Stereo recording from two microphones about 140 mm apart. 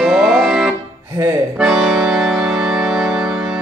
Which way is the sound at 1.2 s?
20° right (ahead or behind).